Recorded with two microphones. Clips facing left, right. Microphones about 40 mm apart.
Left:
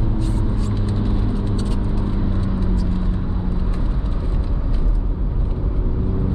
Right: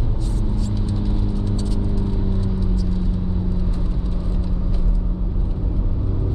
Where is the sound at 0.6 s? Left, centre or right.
Left.